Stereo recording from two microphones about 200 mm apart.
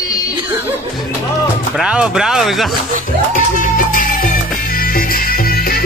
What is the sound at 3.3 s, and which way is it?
Music, 45° left (ahead or behind).